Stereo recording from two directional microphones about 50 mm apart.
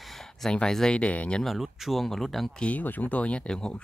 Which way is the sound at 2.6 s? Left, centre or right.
Left.